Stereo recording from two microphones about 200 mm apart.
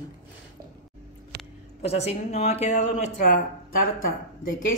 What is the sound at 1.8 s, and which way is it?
Speech, 30° left (ahead or behind).